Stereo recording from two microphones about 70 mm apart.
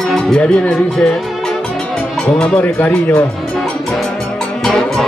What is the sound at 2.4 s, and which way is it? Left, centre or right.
Speech, left.